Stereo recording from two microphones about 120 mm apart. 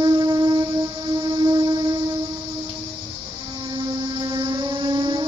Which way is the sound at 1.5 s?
35° right (ahead or behind).